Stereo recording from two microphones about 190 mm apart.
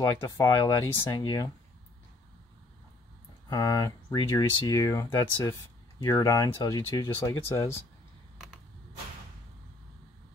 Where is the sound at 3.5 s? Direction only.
20° left (ahead or behind).